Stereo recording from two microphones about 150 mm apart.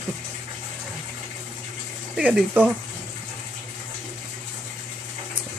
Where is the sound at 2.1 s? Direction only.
5° right (ahead or behind).